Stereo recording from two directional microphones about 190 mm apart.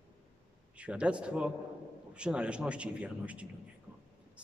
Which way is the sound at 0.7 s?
5° right (ahead or behind).